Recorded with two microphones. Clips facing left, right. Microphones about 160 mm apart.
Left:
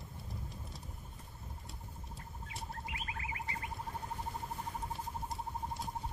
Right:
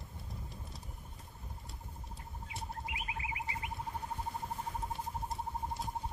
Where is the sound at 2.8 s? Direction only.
20° right (ahead or behind).